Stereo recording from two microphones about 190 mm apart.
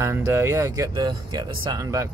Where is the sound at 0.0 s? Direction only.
15° right (ahead or behind).